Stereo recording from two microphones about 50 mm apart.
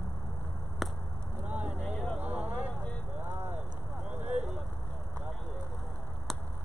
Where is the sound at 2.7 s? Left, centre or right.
Left.